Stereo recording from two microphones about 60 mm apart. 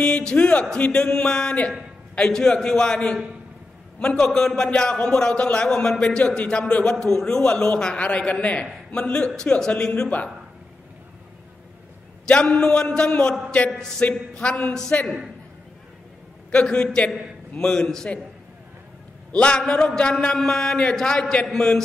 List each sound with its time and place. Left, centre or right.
0.0 s a man's voice: centre
12.3 s a man's voice: centre
16.5 s a man's voice: centre
19.3 s a man's voice: centre